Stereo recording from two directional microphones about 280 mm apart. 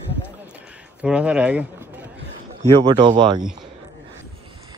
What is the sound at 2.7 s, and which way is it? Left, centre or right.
Speech, centre.